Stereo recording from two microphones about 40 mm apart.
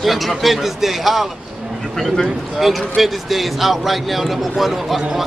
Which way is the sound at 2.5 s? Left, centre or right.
Centre.